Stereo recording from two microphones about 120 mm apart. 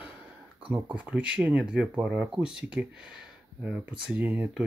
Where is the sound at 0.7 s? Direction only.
10° right (ahead or behind).